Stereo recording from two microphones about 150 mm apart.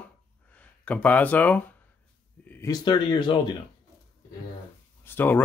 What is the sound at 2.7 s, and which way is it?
Speech, 30° left (ahead or behind).